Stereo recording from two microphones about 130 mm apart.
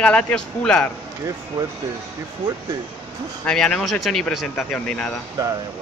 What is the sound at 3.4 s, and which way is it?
Speech, 5° left (ahead or behind).